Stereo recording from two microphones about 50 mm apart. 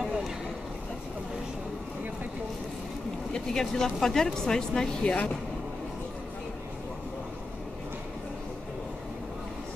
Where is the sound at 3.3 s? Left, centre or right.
Centre.